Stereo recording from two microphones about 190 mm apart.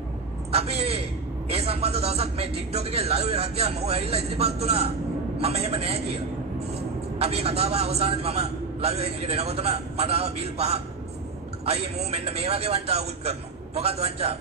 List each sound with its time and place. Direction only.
0.5 s a man's voice: 30° right (ahead or behind)